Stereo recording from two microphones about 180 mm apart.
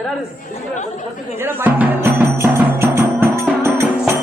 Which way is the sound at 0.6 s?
40° left (ahead or behind).